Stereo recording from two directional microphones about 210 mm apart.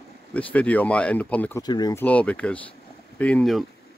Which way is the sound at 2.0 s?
5° left (ahead or behind).